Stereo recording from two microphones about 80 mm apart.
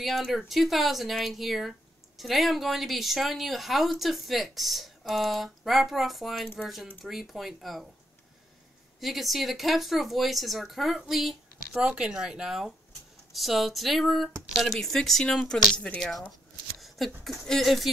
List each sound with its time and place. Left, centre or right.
0.0 s speech: centre
9.0 s speech: centre